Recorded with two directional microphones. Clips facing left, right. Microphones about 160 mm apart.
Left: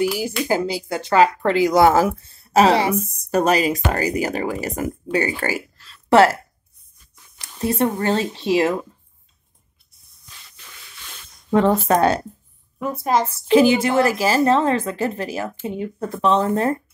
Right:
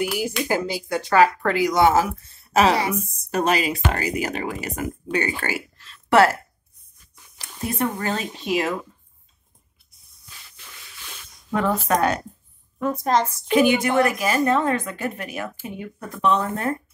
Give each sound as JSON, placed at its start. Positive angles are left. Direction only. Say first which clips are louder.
{"t": 0.5, "sound": "speech", "louder": "left 2 dB", "side_deg": 25}
{"t": 7.6, "sound": "a woman's voice", "louder": "left 5 dB", "side_deg": 30}
{"t": 11.5, "sound": "a woman's voice", "louder": "left 5 dB", "side_deg": 30}
{"t": 12.7, "sound": "speech", "louder": "left 1 dB", "side_deg": 10}
{"t": 13.3, "sound": "a woman's voice", "louder": "left 7 dB", "side_deg": 30}